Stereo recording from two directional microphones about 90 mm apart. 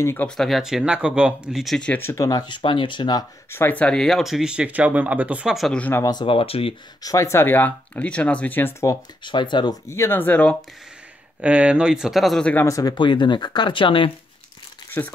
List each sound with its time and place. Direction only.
0.0 s speech: 25° left (ahead or behind)
0.4 s speech: centre (ahead or behind)
2.1 s speech: 40° left (ahead or behind)
2.4 s speech: 65° left (ahead or behind)
3.5 s speech: 20° left (ahead or behind); by 5.5 s 15° right (ahead or behind)
5.7 s speech: 15° left (ahead or behind)
6.2 s speech: 90° left
7.0 s speech: 40° left (ahead or behind); by 8.7 s 20° left (ahead or behind)
9.2 s speech: 60° left (ahead or behind)
9.8 s speech: 30° left (ahead or behind)
11.4 s speech: 15° right (ahead or behind)
12.6 s speech: 40° left (ahead or behind)
12.9 s speech: 60° left (ahead or behind); by 14.1 s 75° left (ahead or behind)
14.9 s speech: 20° left (ahead or behind)